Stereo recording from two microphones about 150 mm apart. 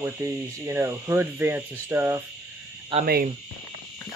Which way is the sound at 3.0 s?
90° right.